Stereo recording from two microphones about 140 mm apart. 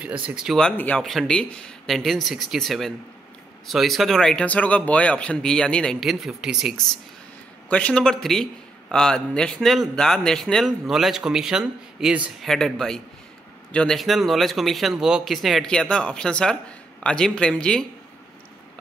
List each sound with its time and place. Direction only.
0.0 s speech: 10° right (ahead or behind)
0.6 s a man's voice: 10° left (ahead or behind)
7.7 s a man's voice: 10° left (ahead or behind)